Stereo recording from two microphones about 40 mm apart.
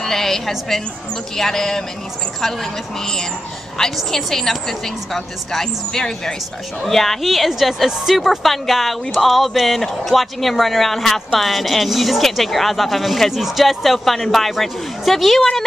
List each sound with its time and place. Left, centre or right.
0.0 s a sound: centre
0.5 s a woman's voice: centre
3.8 s a woman's voice: centre